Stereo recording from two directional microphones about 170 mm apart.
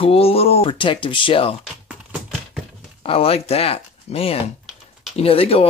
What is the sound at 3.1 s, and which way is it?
Speech, 35° left (ahead or behind).